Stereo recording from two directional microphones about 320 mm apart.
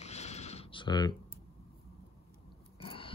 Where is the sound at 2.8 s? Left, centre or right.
Centre.